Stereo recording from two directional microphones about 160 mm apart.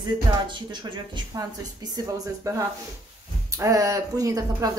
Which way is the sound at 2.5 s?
20° right (ahead or behind).